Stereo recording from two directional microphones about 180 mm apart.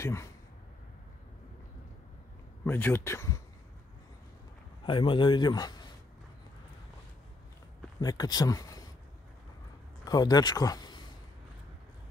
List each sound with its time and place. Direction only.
0.0 s speech: 15° left (ahead or behind)
2.6 s speech: 10° left (ahead or behind)
4.8 s a man's voice: 30° left (ahead or behind)
8.0 s a man's voice: 20° left (ahead or behind)
10.0 s speech: 20° left (ahead or behind)